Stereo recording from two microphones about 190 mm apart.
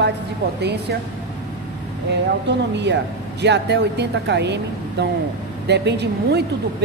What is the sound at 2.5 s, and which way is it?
A woman's voice, 65° right (ahead or behind).